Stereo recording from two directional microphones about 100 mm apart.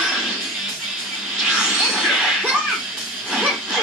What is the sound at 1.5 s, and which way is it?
Music, 10° right (ahead or behind).